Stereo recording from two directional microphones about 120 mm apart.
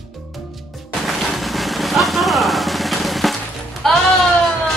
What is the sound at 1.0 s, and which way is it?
Vehicle, centre (ahead or behind).